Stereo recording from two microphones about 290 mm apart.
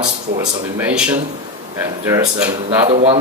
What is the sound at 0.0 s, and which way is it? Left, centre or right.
Speech, centre.